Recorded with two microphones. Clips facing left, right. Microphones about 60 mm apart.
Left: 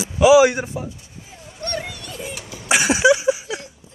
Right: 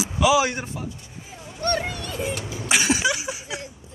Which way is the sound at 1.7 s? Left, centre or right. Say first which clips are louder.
Right 4 dB; right.